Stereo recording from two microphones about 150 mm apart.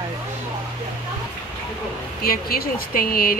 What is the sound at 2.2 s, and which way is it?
Speech, 90° left.